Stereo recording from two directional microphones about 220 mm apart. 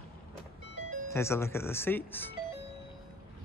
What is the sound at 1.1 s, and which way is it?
Speech, 10° left (ahead or behind).